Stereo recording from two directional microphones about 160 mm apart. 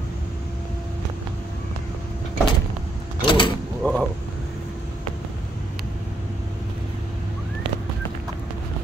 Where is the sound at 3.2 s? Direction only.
30° left (ahead or behind).